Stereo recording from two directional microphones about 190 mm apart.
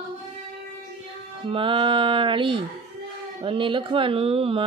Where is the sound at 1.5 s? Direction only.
25° right (ahead or behind).